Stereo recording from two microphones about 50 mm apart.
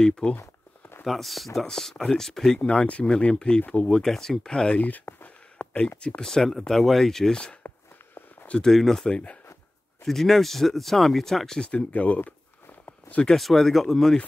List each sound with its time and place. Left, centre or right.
0.0 s speech: centre
1.0 s speech: centre
2.6 s speech: centre
3.6 s speech: left
4.0 s speech: centre
4.8 s a sound: left
5.9 s speech: left
6.2 s speech: centre
8.6 s speech: centre
9.1 s speech: left
10.0 s speech: centre
11.7 s speech: left
13.4 s speech: centre